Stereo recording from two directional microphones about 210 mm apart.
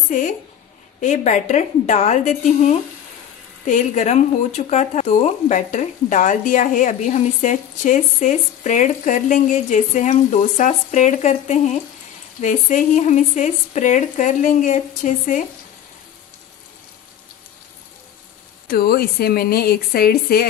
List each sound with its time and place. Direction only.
1.0 s speech: 35° left (ahead or behind)
18.7 s a woman's voice: 45° left (ahead or behind)